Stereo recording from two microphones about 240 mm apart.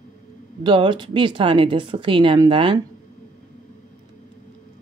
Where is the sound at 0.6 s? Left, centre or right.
Centre.